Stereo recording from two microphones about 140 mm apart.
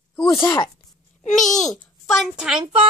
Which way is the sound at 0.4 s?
30° left (ahead or behind).